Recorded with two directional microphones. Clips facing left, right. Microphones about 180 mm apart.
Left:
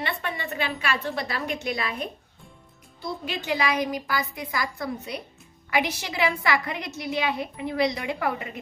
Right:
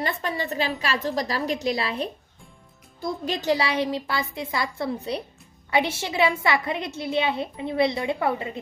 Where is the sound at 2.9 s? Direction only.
45° right (ahead or behind); by 8.6 s 25° right (ahead or behind).